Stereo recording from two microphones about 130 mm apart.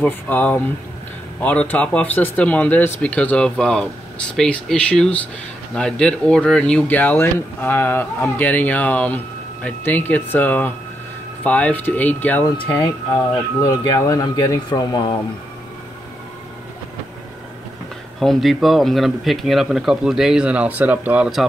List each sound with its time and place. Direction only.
0.0 s speech: 15° left (ahead or behind)
12.7 s speech: 35° left (ahead or behind)
18.2 s speech: centre (ahead or behind)